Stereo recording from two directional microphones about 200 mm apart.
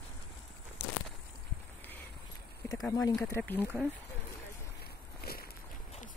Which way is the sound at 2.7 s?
15° left (ahead or behind).